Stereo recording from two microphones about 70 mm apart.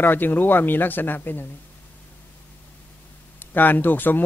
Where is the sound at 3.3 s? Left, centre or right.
Left.